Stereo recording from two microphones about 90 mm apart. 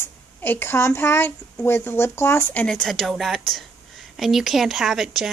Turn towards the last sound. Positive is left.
turn(degrees=-5)  # may be behind; listen again after turning